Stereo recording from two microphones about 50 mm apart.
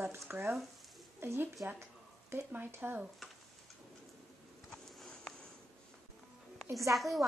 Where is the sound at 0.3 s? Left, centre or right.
Right.